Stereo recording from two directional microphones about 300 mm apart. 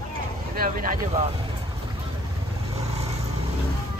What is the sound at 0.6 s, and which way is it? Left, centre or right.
Speech, right.